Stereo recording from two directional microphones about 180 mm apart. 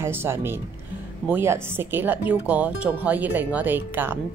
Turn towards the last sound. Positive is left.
turn(degrees=-10)  # may be behind; listen again after turning